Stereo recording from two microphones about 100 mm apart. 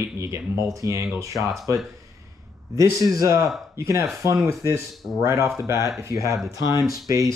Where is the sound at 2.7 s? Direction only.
35° right (ahead or behind).